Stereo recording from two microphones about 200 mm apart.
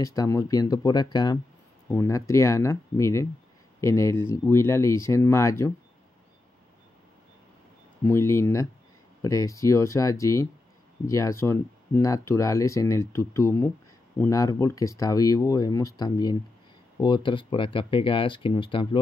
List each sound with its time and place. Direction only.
0.0 s speech: 15° left (ahead or behind)
8.0 s speech: 15° left (ahead or behind)